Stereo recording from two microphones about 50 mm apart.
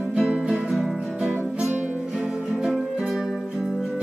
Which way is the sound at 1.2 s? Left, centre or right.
Right.